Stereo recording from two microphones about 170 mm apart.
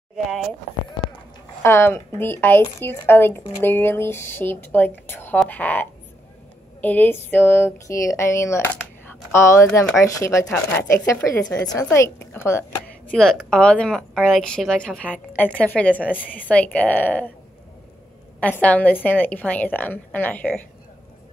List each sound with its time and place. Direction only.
0.3 s speech: centre (ahead or behind)
1.6 s speech: 15° left (ahead or behind)
13.1 s speech: 5° left (ahead or behind)
18.4 s speech: 10° left (ahead or behind)